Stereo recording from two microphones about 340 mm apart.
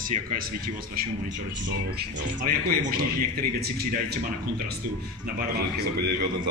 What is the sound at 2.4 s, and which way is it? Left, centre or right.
A man's voice, right.